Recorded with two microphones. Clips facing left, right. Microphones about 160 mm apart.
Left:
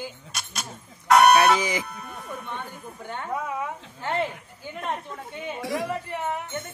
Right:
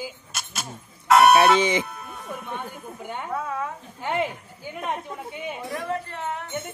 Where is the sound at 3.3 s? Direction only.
15° left (ahead or behind).